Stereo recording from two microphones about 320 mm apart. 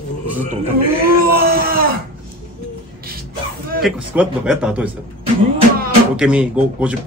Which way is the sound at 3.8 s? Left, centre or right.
Centre.